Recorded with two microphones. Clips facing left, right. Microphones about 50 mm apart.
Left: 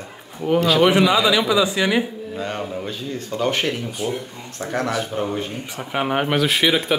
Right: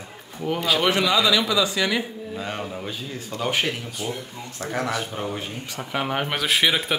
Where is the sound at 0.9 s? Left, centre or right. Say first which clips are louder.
Left 4 dB; centre.